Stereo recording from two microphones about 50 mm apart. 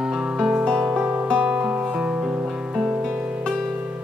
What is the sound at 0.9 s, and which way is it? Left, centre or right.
Music, right.